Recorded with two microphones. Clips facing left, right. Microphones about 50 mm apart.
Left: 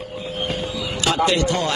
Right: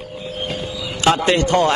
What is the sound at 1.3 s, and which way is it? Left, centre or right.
Speech, right.